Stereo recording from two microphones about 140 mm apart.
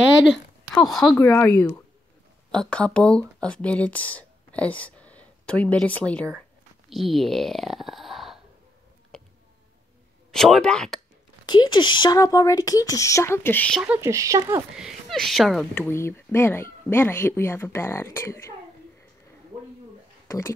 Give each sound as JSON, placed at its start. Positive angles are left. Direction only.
{"t": 0.7, "sound": "speech", "side_deg": 0}
{"t": 1.1, "sound": "speech", "side_deg": 20}
{"t": 2.5, "sound": "speech", "side_deg": 5}
{"t": 10.3, "sound": "speech", "side_deg": 5}
{"t": 11.4, "sound": "speech", "side_deg": 30}
{"t": 13.8, "sound": "speech", "side_deg": -15}
{"t": 14.8, "sound": "speech", "side_deg": 0}
{"t": 15.9, "sound": "speech", "side_deg": 20}
{"t": 20.2, "sound": "speech", "side_deg": 20}